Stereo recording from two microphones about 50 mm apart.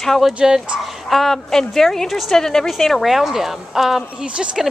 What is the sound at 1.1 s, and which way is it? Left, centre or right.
Speech, centre.